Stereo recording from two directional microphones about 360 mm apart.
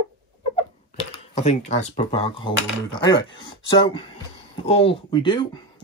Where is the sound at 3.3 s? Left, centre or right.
Centre.